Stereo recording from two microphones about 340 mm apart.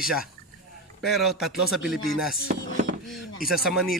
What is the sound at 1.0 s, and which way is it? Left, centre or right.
Speech, centre.